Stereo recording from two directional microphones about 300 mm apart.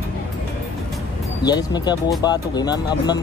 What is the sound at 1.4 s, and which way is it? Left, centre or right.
Speech, centre.